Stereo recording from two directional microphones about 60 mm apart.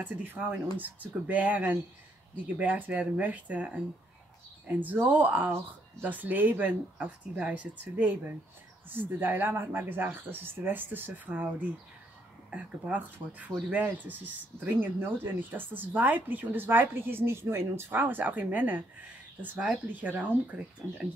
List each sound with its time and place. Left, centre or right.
0.0 s speech: right
19.9 s speech: right